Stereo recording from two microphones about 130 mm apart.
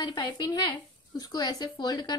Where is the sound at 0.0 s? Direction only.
35° left (ahead or behind).